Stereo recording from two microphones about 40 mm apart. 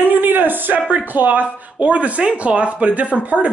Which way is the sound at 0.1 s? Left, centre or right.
Right.